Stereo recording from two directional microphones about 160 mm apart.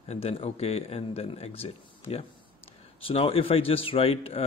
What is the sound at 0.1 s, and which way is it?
A man's voice, 40° left (ahead or behind).